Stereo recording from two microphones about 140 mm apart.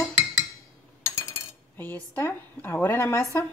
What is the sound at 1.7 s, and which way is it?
A woman's voice, 15° left (ahead or behind).